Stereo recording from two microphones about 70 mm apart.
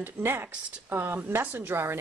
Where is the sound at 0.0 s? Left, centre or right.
Right.